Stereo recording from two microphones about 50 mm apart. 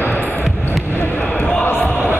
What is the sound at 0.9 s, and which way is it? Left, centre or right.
Basketball bounce, left.